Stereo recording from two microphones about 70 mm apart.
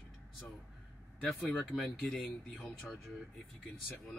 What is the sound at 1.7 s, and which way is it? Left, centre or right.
Speech, centre.